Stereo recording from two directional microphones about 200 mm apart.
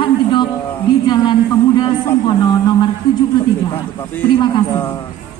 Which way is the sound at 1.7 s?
20° left (ahead or behind).